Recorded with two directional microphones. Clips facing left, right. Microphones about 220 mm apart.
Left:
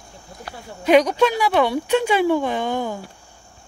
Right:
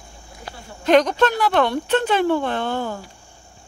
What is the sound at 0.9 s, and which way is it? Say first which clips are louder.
Speech: left 1 dB; 10° left (ahead or behind).